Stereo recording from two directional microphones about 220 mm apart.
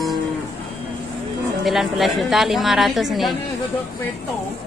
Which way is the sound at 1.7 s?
Centre (ahead or behind).